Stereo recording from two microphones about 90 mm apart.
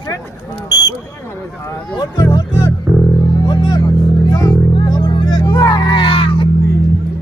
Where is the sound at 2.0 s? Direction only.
40° left (ahead or behind); by 6.5 s 80° left.